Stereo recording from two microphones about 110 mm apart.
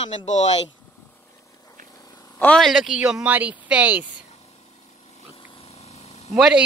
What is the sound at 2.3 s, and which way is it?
Speech, 10° left (ahead or behind).